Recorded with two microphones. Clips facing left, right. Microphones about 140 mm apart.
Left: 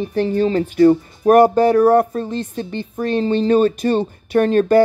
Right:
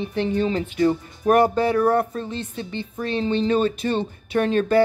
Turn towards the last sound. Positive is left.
turn(degrees=45)  # may be behind; listen again after turning